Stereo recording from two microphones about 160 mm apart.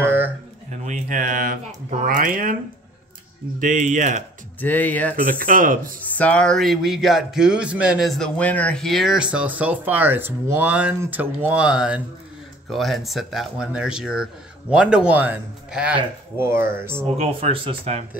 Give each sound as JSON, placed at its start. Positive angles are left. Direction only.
{"t": 0.0, "sound": "a sound", "side_deg": -15}
{"t": 0.7, "sound": "speech", "side_deg": -50}
{"t": 3.5, "sound": "speech", "side_deg": -50}
{"t": 4.6, "sound": "speech", "side_deg": 10}
{"t": 5.1, "sound": "speech", "side_deg": -60}
{"t": 6.0, "sound": "speech", "side_deg": 10}
{"t": 17.0, "sound": "speech", "side_deg": -40}